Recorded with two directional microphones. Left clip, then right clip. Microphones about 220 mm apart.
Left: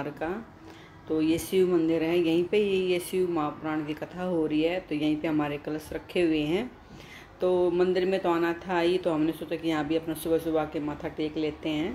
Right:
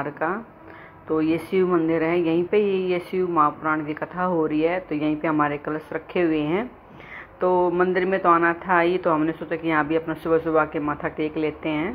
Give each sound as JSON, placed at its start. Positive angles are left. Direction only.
{"t": 0.0, "sound": "speech", "side_deg": 10}
{"t": 1.5, "sound": "speech", "side_deg": 10}
{"t": 7.4, "sound": "mantra", "side_deg": -15}
{"t": 7.7, "sound": "speech", "side_deg": 10}